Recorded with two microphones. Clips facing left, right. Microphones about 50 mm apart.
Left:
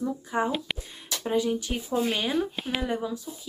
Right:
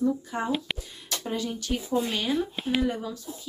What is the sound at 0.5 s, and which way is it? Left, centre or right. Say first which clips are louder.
Speech: right 1 dB; centre.